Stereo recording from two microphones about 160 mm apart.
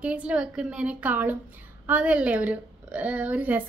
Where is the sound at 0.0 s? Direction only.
10° right (ahead or behind).